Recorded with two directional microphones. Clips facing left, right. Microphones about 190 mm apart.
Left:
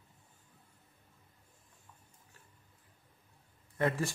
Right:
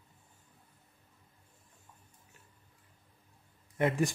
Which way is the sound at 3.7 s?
20° right (ahead or behind).